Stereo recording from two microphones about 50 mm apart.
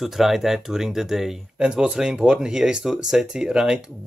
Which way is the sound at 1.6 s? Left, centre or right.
Centre.